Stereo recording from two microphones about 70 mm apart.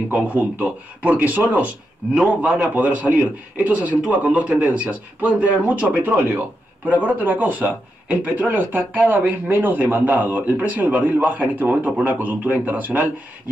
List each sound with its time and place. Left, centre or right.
0.1 s a man's voice: centre